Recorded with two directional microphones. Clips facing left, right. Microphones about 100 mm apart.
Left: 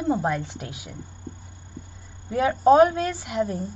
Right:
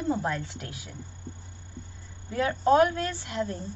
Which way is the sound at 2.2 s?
20° left (ahead or behind).